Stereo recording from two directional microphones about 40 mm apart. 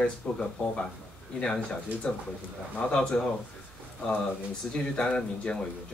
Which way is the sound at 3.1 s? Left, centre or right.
Left.